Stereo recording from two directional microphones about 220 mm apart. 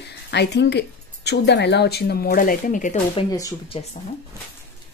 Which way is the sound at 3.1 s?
20° left (ahead or behind).